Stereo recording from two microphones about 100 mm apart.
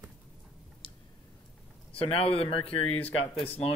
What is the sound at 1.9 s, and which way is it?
Speech, 70° left (ahead or behind).